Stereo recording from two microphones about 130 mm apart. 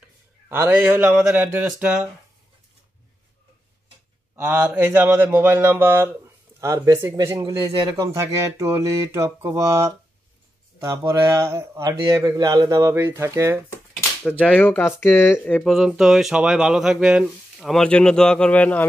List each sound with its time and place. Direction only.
0.5 s speech: 15° right (ahead or behind)
4.4 s speech: 15° right (ahead or behind)
14.5 s speech: 10° left (ahead or behind)
15.6 s speech: centre (ahead or behind)